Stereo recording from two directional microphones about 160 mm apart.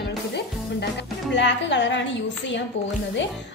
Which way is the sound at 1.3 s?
90° left.